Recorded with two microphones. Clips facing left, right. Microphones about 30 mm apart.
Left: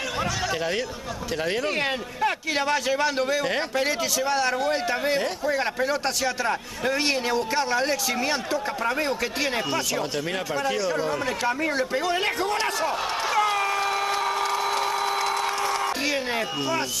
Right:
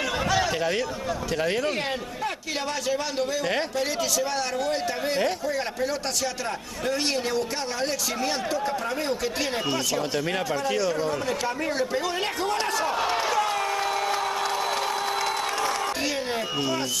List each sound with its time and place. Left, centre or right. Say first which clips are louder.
0.6 s speech: right 1 dB; centre
1.8 s a man's voice: left 4 dB; left
4.2 s a man's voice: left 3 dB; centre
10.7 s speech: even; centre
14.4 s a sound: left 2 dB; centre